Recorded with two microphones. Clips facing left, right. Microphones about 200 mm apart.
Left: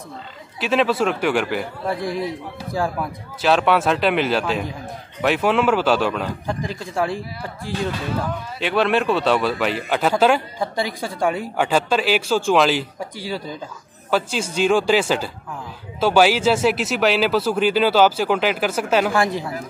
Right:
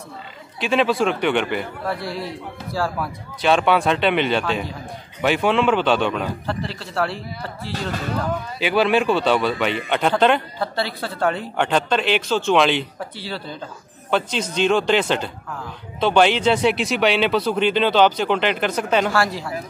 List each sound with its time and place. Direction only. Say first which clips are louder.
0.6 s speech: even; centre (ahead or behind)
1.9 s speech: left 5 dB; 15° left (ahead or behind)
3.3 s speech: even; centre (ahead or behind)
6.4 s speech: left 1 dB; 15° left (ahead or behind)
8.5 s speech: right 1 dB; centre (ahead or behind)
19.1 s speech: left 1 dB; 20° left (ahead or behind)